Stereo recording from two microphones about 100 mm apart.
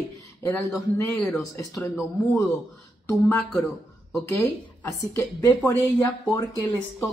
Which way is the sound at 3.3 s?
20° left (ahead or behind).